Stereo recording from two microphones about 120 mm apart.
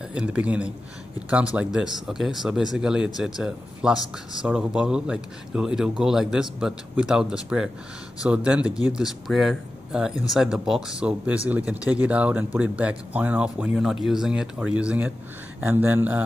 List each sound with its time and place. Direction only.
0.1 s speech: 10° right (ahead or behind)